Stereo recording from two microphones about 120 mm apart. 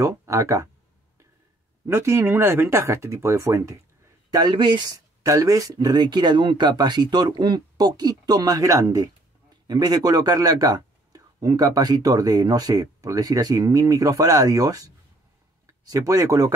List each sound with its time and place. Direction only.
0.0 s speech: 25° right (ahead or behind)
1.9 s speech: 20° right (ahead or behind)
4.3 s speech: 40° right (ahead or behind)